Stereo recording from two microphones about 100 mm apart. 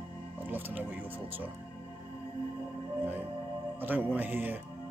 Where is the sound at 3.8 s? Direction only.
20° right (ahead or behind).